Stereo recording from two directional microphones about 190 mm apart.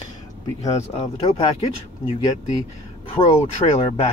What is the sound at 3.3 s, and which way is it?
Speech, 35° left (ahead or behind).